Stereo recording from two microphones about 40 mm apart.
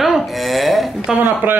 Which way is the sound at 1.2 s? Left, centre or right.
Right.